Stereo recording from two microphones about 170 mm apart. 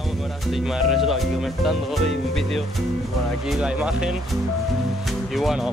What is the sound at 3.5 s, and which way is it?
Speech, 5° right (ahead or behind).